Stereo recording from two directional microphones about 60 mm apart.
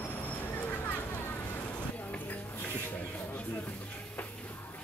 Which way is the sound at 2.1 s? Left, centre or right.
Left.